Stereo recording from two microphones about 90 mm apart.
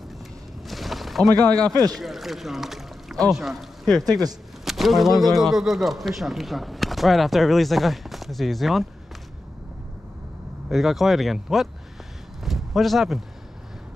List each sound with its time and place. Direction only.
0.7 s a sound: centre (ahead or behind)
1.7 s speech: 45° right (ahead or behind)
2.0 s rowboat: centre (ahead or behind)
3.3 s speech: centre (ahead or behind)
10.7 s speech: centre (ahead or behind)